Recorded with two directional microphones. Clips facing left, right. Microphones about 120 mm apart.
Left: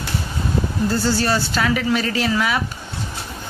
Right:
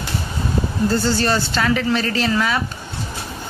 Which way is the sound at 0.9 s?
10° left (ahead or behind).